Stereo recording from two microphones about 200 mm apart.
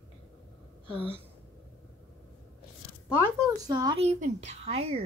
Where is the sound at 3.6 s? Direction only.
20° right (ahead or behind).